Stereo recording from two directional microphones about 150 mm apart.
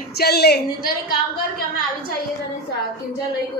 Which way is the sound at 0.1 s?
90° left.